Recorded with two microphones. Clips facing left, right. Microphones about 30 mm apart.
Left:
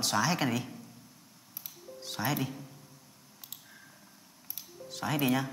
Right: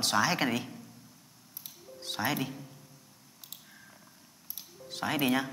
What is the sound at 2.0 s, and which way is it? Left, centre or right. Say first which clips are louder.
Speech: right 1 dB; centre.